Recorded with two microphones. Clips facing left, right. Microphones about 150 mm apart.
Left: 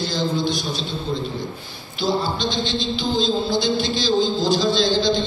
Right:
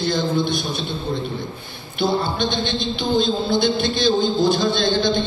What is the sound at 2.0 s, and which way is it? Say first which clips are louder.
Speech: right 1 dB; 60° right (ahead or behind).